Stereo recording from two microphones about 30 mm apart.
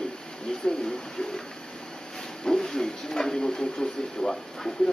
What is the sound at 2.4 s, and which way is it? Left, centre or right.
Speech, left.